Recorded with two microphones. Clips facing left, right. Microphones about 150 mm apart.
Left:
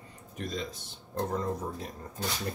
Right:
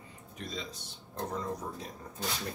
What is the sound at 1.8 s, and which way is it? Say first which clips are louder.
Speech: left 3 dB; centre (ahead or behind).